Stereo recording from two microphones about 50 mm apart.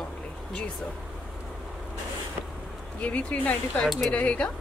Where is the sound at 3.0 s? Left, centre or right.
Left.